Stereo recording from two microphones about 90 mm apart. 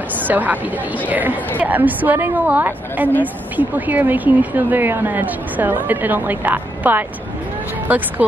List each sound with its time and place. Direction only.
0.2 s speech: 20° right (ahead or behind)